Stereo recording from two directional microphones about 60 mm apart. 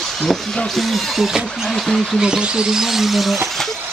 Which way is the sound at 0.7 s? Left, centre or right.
Centre.